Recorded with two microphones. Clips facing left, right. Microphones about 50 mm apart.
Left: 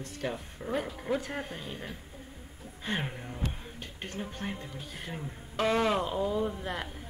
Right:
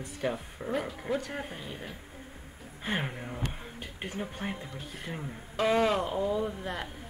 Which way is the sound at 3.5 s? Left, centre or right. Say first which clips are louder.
Right 1 dB; centre.